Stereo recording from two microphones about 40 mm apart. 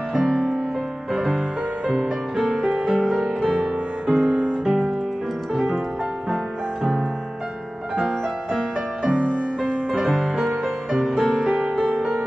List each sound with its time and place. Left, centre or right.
0.1 s music: centre
1.9 s music: right
2.3 s music: centre
3.0 s music: centre
4.1 s music: right
4.6 s music: centre
9.0 s music: right
9.3 s music: left
10.6 s music: centre